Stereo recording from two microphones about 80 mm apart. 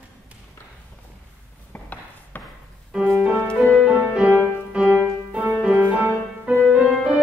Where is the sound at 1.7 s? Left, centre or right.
Left.